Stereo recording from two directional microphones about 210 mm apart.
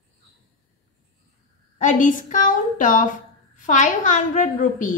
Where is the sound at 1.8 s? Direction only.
35° left (ahead or behind).